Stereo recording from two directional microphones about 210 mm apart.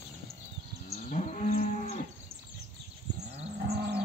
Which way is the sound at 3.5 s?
50° right (ahead or behind).